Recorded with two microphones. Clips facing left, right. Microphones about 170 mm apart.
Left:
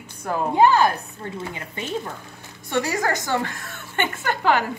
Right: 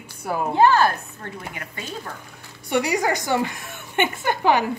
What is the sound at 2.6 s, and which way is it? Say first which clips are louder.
A woman's voice: right 2 dB; 15° right (ahead or behind).